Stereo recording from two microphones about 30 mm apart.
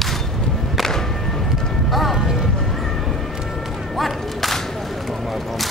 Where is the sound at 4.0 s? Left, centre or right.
Centre.